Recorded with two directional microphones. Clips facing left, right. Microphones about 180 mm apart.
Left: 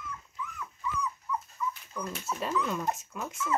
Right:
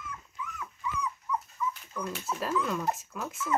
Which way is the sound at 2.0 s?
Centre (ahead or behind).